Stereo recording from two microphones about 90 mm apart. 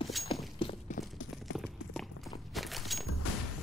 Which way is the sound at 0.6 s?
65° left (ahead or behind).